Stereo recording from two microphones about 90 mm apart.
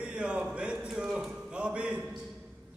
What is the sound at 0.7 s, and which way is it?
A man's voice, 5° right (ahead or behind).